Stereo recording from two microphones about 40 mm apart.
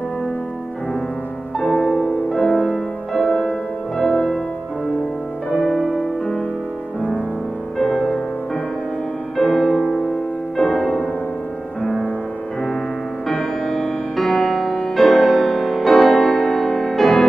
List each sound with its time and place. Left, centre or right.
1.6 s music: centre
5.6 s music: centre
7.8 s music: centre
9.4 s music: centre
13.3 s music: centre